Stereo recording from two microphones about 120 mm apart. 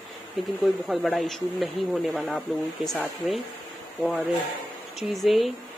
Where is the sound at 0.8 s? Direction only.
Centre (ahead or behind).